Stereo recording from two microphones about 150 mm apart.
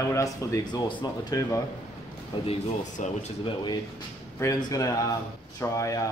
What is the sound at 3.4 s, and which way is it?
Speech, 35° left (ahead or behind).